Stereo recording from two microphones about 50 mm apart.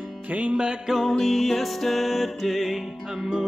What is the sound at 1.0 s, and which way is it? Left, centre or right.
Music, centre.